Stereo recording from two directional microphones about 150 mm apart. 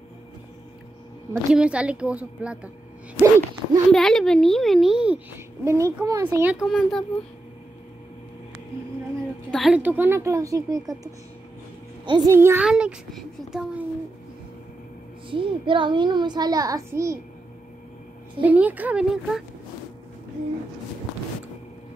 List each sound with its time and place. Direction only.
1.5 s a woman's voice: 5° right (ahead or behind)
3.9 s a child's voice: 5° left (ahead or behind)
5.7 s speech: 20° right (ahead or behind)
6.5 s a child's voice: centre (ahead or behind)
9.5 s a woman's voice: centre (ahead or behind)
9.8 s speech: 10° right (ahead or behind)
12.3 s a woman's voice: 15° right (ahead or behind)
12.6 s a child's voice: 5° right (ahead or behind)
15.2 s a child's voice: 35° right (ahead or behind); by 17.2 s 20° right (ahead or behind)
18.4 s a woman's voice: 10° right (ahead or behind)